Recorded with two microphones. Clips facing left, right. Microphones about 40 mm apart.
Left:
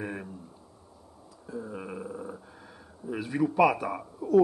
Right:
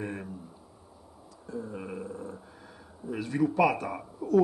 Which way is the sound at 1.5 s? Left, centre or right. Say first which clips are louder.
Even; centre.